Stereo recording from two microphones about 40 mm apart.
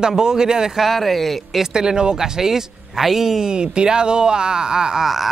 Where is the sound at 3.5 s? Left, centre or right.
Right.